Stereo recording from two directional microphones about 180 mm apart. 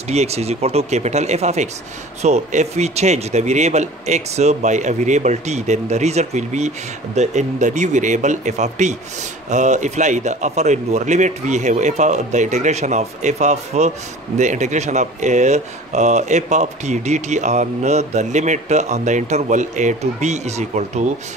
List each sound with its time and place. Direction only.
0.1 s speech: 35° right (ahead or behind)